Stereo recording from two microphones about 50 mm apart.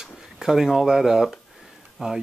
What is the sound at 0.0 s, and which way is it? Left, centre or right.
Speech, centre.